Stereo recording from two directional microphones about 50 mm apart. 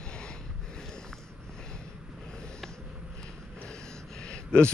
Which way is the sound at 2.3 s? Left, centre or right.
Centre.